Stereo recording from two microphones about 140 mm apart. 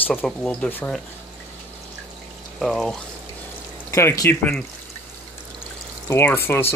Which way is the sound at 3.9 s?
25° left (ahead or behind).